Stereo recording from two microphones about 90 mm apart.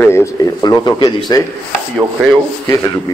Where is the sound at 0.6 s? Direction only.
50° left (ahead or behind).